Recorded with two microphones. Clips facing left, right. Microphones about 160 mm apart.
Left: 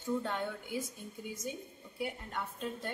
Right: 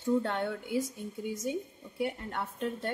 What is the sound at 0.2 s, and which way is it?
Speech, 70° right (ahead or behind).